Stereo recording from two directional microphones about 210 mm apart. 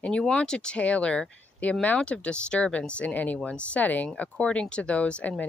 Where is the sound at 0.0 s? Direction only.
5° left (ahead or behind).